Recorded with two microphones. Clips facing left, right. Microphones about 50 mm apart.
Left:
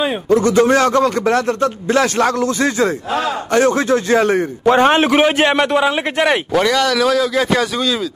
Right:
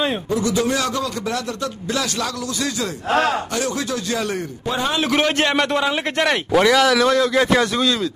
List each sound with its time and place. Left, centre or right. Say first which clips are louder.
0.3 s a man's voice: left 11 dB; left
3.1 s speech: right 1 dB; right
3.5 s speech: left 10 dB; left
4.6 s a man's voice: left 11 dB; left
5.0 s a man's voice: left 5 dB; centre
6.5 s speech: even; centre